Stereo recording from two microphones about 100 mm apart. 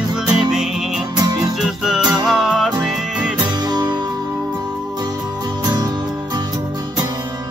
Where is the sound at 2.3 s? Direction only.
5° right (ahead or behind).